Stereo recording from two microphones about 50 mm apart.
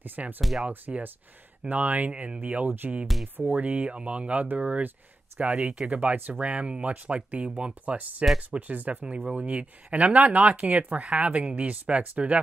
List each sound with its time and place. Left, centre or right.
0.0 s speech: right
0.4 s speech: centre
0.9 s speech: centre
1.7 s speech: right